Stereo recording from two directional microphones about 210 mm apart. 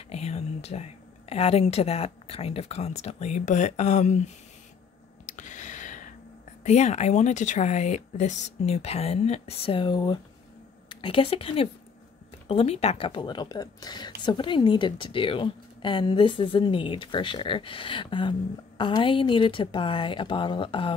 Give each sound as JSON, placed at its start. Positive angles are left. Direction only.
{"t": 0.1, "sound": "whispering", "side_deg": 30}
{"t": 1.3, "sound": "speech", "side_deg": 30}
{"t": 5.2, "sound": "a sound", "side_deg": 35}
{"t": 6.6, "sound": "a woman's voice", "side_deg": 35}